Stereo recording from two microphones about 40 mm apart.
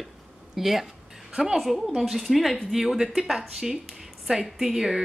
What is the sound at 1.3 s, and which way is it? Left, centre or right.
Speech, centre.